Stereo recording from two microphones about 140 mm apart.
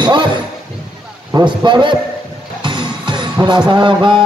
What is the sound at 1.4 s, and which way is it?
Music, 35° right (ahead or behind).